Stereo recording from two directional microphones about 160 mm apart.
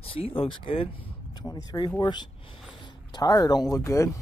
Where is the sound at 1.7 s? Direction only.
25° left (ahead or behind).